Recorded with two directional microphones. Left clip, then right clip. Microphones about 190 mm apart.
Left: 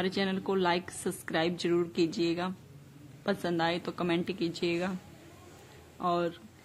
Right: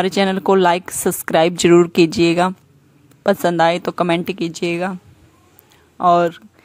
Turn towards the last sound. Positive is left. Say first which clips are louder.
# right 17 dB
turn(degrees=-50)  # may be behind; listen again after turning